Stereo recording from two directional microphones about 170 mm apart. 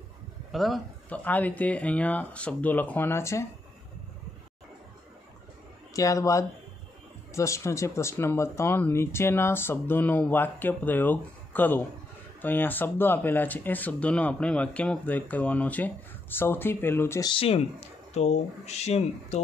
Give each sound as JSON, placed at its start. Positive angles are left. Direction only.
{"t": 0.5, "sound": "speech", "side_deg": 0}
{"t": 5.9, "sound": "a man's voice", "side_deg": 20}
{"t": 17.3, "sound": "speech", "side_deg": 35}